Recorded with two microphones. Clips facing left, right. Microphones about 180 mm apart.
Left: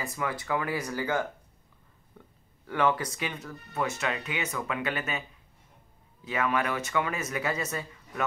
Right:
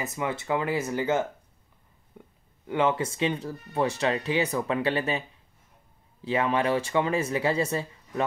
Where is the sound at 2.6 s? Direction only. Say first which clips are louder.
Right 2 dB; 25° right (ahead or behind).